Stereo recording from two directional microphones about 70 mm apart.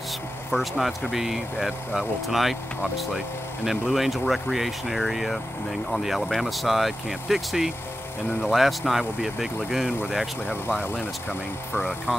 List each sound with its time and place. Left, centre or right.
0.5 s speech: centre
3.6 s speech: centre
10.5 s speech: left
12.1 s speech: centre